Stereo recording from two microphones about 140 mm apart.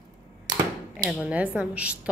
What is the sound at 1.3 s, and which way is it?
Speech, 10° right (ahead or behind).